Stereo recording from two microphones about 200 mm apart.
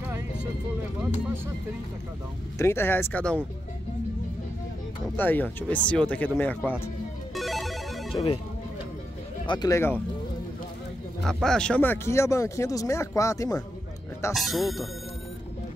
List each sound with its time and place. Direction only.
2.6 s speech: 10° left (ahead or behind)
5.1 s speech: 10° left (ahead or behind)
7.3 s music: centre (ahead or behind)
8.1 s speech: 30° left (ahead or behind)
9.5 s speech: 20° left (ahead or behind)
11.2 s speech: 5° left (ahead or behind)
14.3 s speech: centre (ahead or behind)